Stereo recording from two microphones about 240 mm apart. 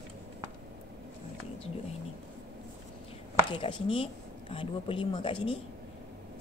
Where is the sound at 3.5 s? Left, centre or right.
Left.